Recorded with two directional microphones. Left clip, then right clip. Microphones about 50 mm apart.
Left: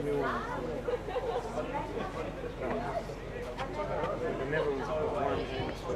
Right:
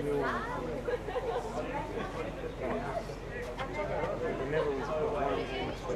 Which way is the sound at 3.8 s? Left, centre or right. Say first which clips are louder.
Even; right.